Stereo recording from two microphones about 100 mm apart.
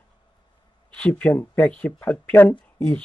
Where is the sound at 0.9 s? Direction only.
10° left (ahead or behind).